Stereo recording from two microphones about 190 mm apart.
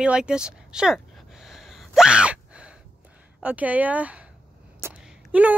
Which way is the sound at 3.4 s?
5° right (ahead or behind).